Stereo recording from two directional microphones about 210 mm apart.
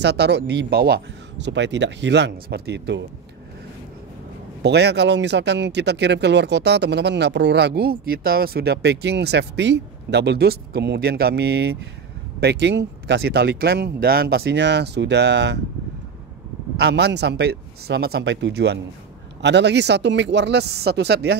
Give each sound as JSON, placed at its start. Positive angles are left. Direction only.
{"t": 0.0, "sound": "speech", "side_deg": -55}
{"t": 4.6, "sound": "speech", "side_deg": -55}
{"t": 16.7, "sound": "speech", "side_deg": -50}